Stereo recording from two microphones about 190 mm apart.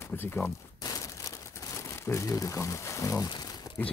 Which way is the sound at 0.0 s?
10° left (ahead or behind).